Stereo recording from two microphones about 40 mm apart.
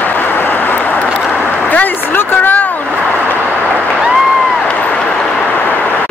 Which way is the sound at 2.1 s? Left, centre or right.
Left.